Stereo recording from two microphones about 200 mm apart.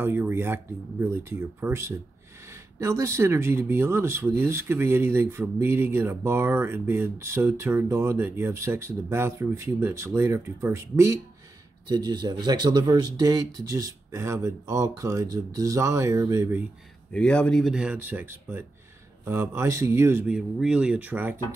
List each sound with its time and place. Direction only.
0.0 s speech: 10° right (ahead or behind)
17.1 s speech: 5° left (ahead or behind)